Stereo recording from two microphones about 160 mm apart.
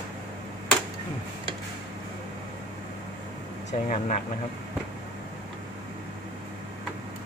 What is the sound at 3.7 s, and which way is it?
Speech, 50° left (ahead or behind).